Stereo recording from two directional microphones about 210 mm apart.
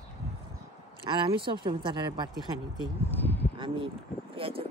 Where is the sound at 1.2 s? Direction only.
25° right (ahead or behind).